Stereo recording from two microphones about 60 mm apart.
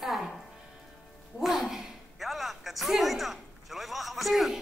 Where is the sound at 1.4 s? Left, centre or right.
Centre.